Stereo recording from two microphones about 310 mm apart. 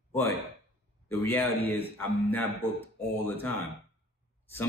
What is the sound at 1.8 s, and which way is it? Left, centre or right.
Mantra, centre.